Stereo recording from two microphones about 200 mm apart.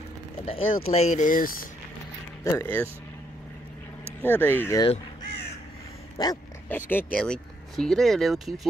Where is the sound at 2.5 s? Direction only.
10° left (ahead or behind).